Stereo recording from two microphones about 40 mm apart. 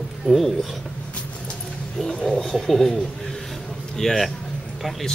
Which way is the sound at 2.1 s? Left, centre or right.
Centre.